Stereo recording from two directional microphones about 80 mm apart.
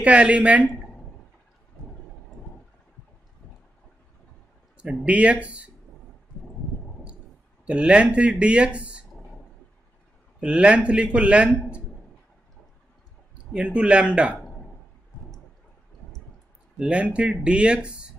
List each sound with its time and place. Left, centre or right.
0.0 s speech: centre
4.7 s speech: centre
7.6 s speech: centre
10.4 s speech: centre
13.6 s speech: centre
16.7 s speech: centre